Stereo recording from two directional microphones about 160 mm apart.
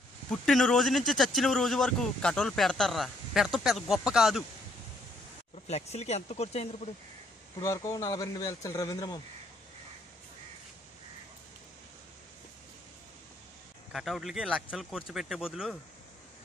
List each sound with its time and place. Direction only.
0.3 s speech: 5° left (ahead or behind)
5.7 s speech: 40° left (ahead or behind)
7.6 s speech: 20° left (ahead or behind)
13.9 s speech: centre (ahead or behind)